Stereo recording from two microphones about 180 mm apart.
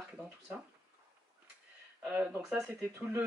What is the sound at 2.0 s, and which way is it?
Speech, 5° right (ahead or behind).